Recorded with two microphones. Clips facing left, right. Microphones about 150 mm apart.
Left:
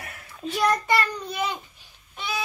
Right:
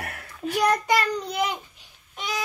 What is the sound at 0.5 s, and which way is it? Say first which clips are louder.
A child's voice: right 1 dB; 15° right (ahead or behind).